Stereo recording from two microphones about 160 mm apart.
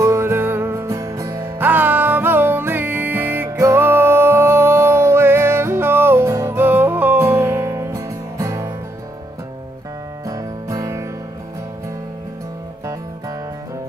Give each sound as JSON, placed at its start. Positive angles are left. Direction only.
{"t": 0.0, "sound": "music", "side_deg": -15}
{"t": 10.2, "sound": "music", "side_deg": -20}